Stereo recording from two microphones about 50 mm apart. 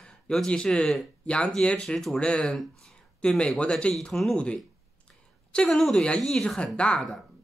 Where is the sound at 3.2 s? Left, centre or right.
Centre.